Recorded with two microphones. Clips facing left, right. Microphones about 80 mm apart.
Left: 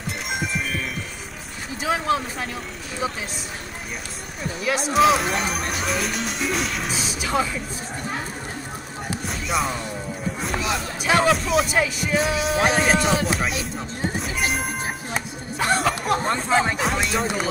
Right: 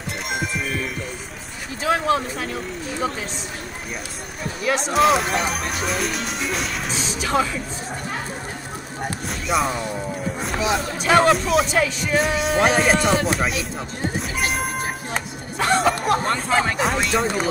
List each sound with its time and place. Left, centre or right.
0.3 s music: centre
1.8 s speech: centre
4.6 s speech: centre
9.5 s speech: centre
14.3 s music: centre
15.8 s a sound: centre
16.4 s speech: centre
16.7 s speech: centre